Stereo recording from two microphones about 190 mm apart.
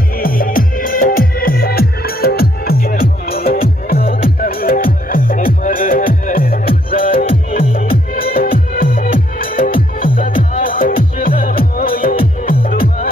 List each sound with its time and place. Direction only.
0.2 s music: 50° left (ahead or behind)